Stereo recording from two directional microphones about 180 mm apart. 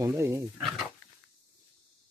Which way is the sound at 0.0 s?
15° right (ahead or behind).